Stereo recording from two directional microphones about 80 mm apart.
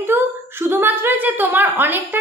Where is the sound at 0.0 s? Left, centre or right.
Right.